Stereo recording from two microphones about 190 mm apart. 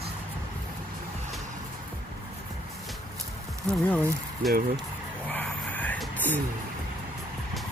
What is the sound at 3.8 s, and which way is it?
Speech, 5° left (ahead or behind).